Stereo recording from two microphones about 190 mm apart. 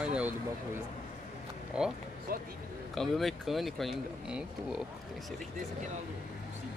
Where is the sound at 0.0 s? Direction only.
5° right (ahead or behind).